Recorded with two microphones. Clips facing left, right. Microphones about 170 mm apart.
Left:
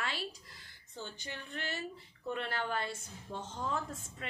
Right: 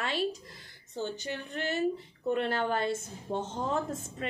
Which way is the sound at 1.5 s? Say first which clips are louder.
Right 7 dB; 20° right (ahead or behind).